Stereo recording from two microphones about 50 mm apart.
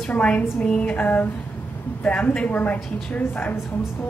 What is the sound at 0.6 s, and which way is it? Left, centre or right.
Music, centre.